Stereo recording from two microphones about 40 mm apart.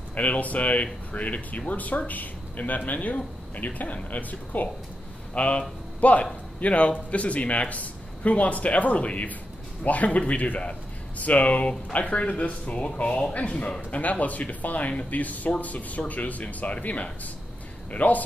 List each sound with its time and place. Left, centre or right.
0.1 s speech: left
5.3 s speech: left